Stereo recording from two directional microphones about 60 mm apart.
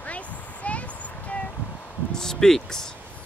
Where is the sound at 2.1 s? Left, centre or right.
Centre.